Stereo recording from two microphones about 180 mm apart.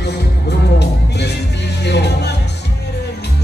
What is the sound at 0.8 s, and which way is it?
Music, 70° left (ahead or behind).